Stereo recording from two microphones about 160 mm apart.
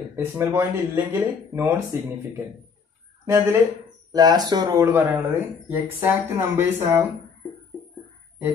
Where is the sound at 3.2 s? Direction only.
15° right (ahead or behind).